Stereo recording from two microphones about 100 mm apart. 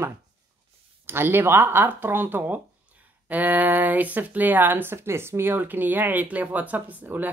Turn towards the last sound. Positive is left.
turn(degrees=-20)  # may be behind; listen again after turning